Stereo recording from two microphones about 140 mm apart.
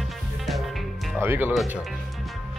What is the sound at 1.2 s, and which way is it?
Speech, 15° right (ahead or behind).